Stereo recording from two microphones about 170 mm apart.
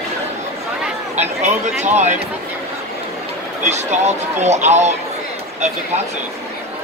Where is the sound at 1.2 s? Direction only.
45° right (ahead or behind).